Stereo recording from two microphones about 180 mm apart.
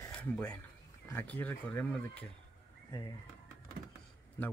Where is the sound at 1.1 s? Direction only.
10° left (ahead or behind).